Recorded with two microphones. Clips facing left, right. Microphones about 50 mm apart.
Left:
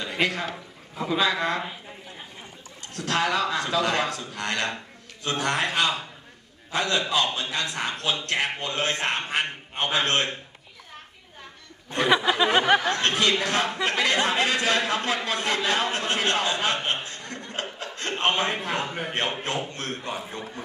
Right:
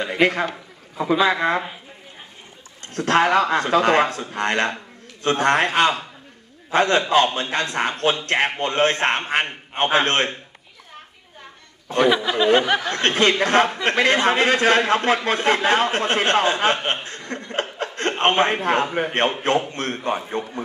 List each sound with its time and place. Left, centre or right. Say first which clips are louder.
0.0 s a sound: right 7 dB; right
1.2 s speech: right 5 dB; right
2.9 s speech: right 8 dB; right
12.1 s speech: right 1 dB; centre
12.9 s speech: right 4 dB; right
17.5 s chuckle: right 8 dB; right
18.2 s speech: right 6 dB; right